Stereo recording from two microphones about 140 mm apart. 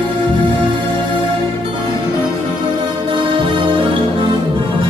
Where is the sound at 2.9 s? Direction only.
40° right (ahead or behind).